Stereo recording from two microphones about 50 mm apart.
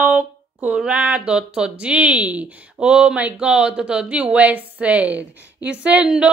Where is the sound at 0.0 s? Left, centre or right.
Right.